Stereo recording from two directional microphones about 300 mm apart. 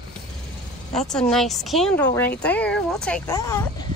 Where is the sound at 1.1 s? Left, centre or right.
Centre.